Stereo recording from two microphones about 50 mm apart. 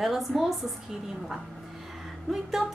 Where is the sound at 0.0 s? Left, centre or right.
Centre.